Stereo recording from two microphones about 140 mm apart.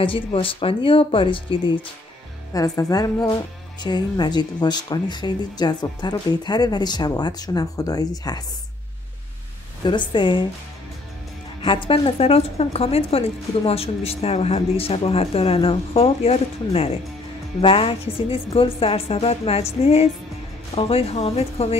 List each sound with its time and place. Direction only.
0.0 s speech: 40° left (ahead or behind)
2.5 s speech: 25° left (ahead or behind)
9.8 s speech: 35° left (ahead or behind)
11.6 s speech: 40° left (ahead or behind)